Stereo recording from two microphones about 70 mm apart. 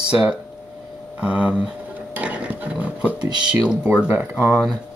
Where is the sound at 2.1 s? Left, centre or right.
Centre.